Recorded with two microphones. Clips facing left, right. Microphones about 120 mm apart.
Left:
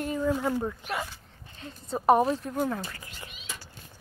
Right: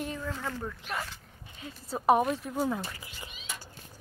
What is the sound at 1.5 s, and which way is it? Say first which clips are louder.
A woman's voice: left 3 dB; centre (ahead or behind).